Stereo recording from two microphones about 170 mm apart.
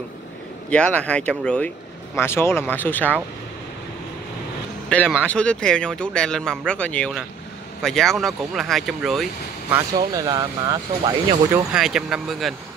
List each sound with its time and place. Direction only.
0.7 s speech: 5° left (ahead or behind)
4.8 s a sound: 10° left (ahead or behind)
5.2 s speech: 5° left (ahead or behind)
9.7 s speech: 20° right (ahead or behind)
11.7 s speech: 5° right (ahead or behind)